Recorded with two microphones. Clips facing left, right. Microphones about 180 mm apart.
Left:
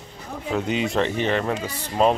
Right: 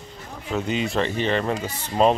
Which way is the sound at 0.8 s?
15° left (ahead or behind).